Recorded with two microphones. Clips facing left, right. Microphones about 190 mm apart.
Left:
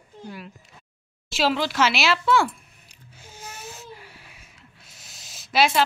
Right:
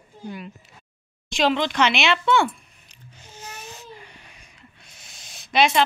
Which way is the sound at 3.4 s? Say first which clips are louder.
Even; 10° left (ahead or behind).